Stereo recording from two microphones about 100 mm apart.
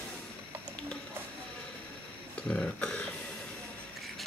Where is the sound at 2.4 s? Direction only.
10° left (ahead or behind).